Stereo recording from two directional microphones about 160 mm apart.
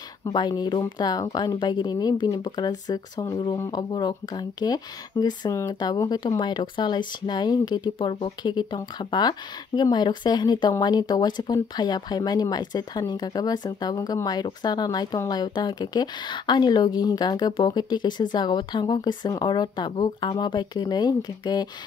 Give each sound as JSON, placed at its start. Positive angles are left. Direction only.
{"t": 0.2, "sound": "speech", "side_deg": 25}